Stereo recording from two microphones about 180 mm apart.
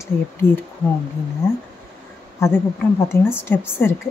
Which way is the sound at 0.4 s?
10° left (ahead or behind).